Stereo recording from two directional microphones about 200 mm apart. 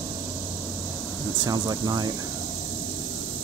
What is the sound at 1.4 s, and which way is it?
Speech, 20° right (ahead or behind).